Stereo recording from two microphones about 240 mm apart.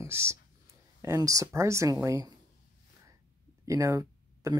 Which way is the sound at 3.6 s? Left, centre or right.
Centre.